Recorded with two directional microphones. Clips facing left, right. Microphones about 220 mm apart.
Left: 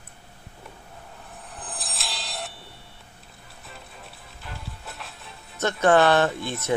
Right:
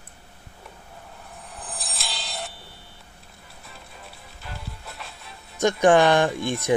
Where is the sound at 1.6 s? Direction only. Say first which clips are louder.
Even; centre (ahead or behind).